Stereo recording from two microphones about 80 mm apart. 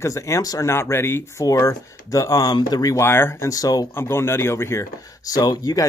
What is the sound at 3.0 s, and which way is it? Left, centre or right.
Speech, left.